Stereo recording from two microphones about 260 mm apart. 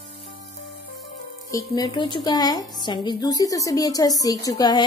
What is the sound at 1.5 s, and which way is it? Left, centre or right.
A woman's voice, centre.